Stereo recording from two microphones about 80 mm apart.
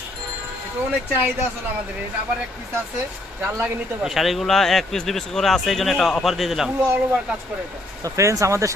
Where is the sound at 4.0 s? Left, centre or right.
Centre.